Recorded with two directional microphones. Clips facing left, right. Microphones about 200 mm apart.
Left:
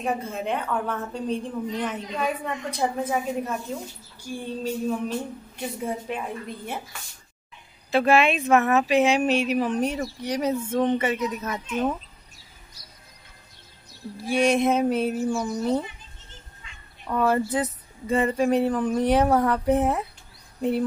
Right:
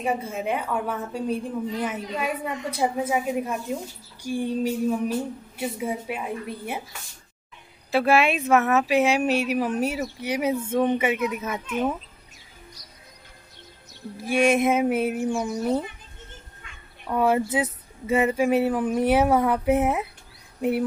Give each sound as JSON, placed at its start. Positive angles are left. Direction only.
{"t": 0.0, "sound": "a woman's voice", "side_deg": -10}
{"t": 7.9, "sound": "a woman's voice", "side_deg": -5}
{"t": 14.2, "sound": "music", "side_deg": -50}
{"t": 14.6, "sound": "a woman's voice", "side_deg": -5}
{"t": 17.1, "sound": "a woman's voice", "side_deg": -10}